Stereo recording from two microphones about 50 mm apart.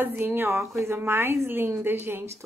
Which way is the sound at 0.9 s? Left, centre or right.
Right.